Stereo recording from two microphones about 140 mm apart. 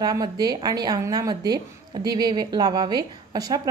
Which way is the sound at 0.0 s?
25° right (ahead or behind).